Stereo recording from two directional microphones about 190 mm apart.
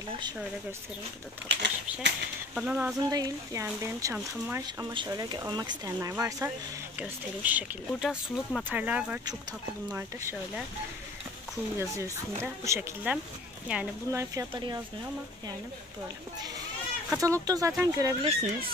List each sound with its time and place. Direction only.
1.5 s speech: 65° right (ahead or behind)
2.5 s speech: 10° right (ahead or behind)
3.0 s speech: 20° right (ahead or behind)
11.8 s speech: 15° right (ahead or behind)
14.3 s speech: 20° right (ahead or behind)
17.2 s speech: 15° right (ahead or behind)
18.2 s speech: 30° right (ahead or behind)